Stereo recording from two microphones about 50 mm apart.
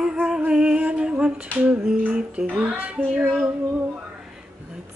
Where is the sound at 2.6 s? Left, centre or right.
Right.